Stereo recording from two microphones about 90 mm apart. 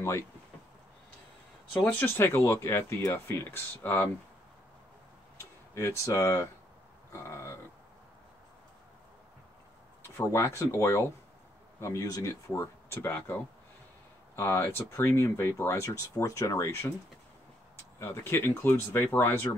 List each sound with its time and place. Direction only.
1.9 s speech: 25° left (ahead or behind)
5.4 s speech: 30° left (ahead or behind)
10.1 s speech: 30° left (ahead or behind)
17.9 s speech: 30° left (ahead or behind)